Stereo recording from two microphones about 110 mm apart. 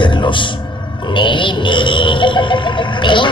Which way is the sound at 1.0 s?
45° left (ahead or behind).